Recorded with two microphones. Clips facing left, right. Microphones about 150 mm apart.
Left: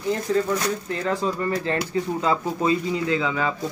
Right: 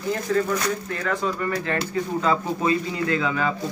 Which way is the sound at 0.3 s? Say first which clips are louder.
Right 1 dB; 20° left (ahead or behind).